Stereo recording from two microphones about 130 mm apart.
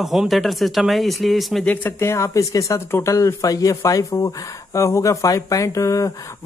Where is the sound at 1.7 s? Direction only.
15° left (ahead or behind).